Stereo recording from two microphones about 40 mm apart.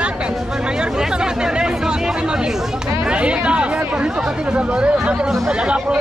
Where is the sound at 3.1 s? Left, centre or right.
Right.